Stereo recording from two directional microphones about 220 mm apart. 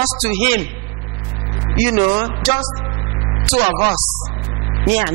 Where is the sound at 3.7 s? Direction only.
25° right (ahead or behind).